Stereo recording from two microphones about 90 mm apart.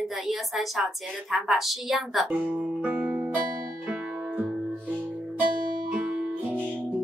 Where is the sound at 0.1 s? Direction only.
Centre (ahead or behind).